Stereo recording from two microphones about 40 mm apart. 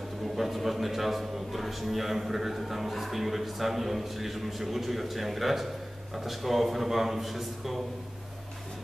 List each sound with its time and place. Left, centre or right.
0.4 s a man's voice: centre